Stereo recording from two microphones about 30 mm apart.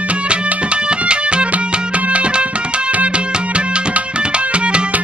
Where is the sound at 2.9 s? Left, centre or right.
Right.